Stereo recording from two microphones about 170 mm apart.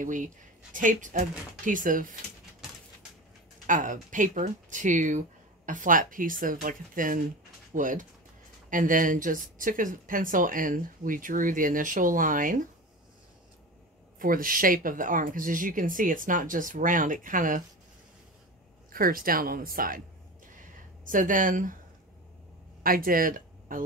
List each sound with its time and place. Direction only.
0.0 s speech: 50° right (ahead or behind)
3.6 s speech: 50° right (ahead or behind)
14.2 s speech: 55° right (ahead or behind)
18.9 s speech: 55° right (ahead or behind)
21.0 s speech: 50° right (ahead or behind)
22.8 s speech: 55° right (ahead or behind)